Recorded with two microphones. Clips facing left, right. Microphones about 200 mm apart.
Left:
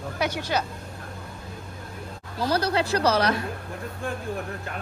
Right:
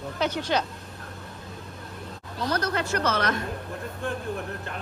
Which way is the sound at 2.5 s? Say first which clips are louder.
Left 3 dB; 30° left (ahead or behind).